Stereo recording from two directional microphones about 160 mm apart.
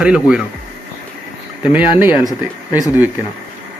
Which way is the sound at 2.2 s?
20° left (ahead or behind).